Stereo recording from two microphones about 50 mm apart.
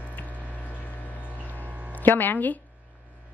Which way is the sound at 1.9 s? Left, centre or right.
Left.